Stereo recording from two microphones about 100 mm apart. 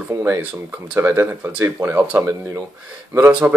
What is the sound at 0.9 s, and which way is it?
Speech, 20° right (ahead or behind).